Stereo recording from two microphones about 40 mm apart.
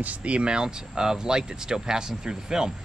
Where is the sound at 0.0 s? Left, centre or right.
Right.